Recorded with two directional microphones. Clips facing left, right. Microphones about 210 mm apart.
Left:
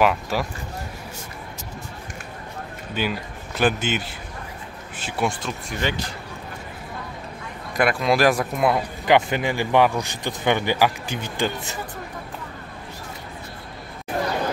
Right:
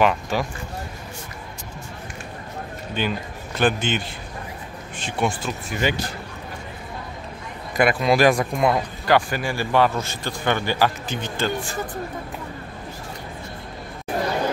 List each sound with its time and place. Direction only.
0.0 s speech: 5° left (ahead or behind)
2.9 s speech: 5° left (ahead or behind)
7.7 s speech: centre (ahead or behind)
9.0 s speech: 20° left (ahead or behind)